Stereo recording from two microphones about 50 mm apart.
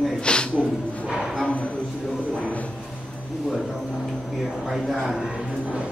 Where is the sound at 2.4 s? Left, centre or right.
Left.